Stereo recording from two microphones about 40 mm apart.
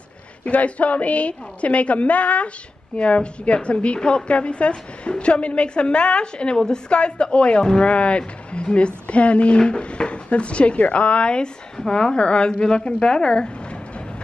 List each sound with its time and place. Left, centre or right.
0.5 s a woman's voice: left